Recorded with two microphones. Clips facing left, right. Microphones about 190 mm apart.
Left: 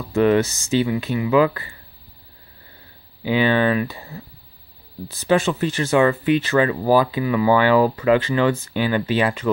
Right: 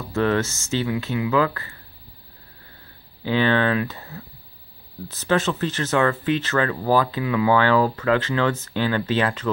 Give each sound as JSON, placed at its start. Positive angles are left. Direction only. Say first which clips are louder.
{"t": 0.1, "sound": "speech", "louder": "left 5 dB", "side_deg": 15}
{"t": 3.3, "sound": "speech", "louder": "left 2 dB", "side_deg": 10}